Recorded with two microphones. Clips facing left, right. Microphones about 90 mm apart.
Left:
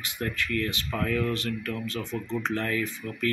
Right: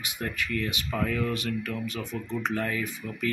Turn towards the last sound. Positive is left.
turn(degrees=-10)  # may be behind; listen again after turning